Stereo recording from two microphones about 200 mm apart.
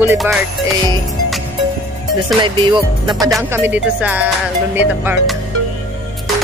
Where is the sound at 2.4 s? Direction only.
25° right (ahead or behind).